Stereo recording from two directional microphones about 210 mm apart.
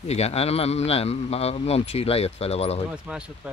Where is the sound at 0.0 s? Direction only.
30° left (ahead or behind).